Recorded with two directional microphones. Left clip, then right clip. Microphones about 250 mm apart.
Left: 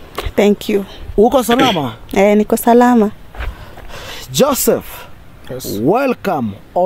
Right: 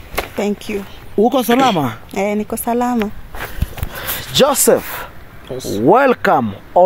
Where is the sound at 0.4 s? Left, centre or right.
Left.